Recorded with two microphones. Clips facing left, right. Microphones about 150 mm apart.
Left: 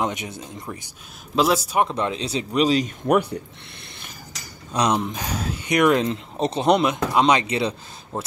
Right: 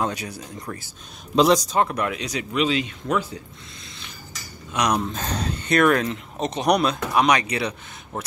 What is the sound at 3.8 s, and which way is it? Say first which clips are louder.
Cat: even; 60° left (ahead or behind).